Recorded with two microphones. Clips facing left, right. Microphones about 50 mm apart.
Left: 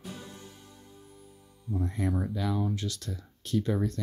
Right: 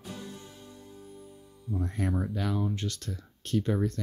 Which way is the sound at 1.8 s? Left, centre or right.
Right.